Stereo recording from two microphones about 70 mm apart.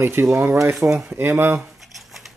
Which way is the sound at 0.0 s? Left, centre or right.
Right.